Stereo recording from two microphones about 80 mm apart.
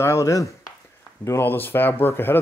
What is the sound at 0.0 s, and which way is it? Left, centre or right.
Speech, left.